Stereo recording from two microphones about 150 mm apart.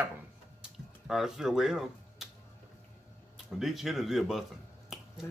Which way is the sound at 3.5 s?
Centre (ahead or behind).